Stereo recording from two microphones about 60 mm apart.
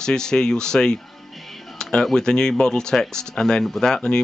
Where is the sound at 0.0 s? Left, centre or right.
Centre.